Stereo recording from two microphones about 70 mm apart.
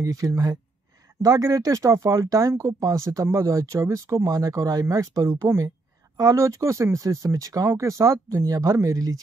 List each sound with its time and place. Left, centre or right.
0.0 s speech: right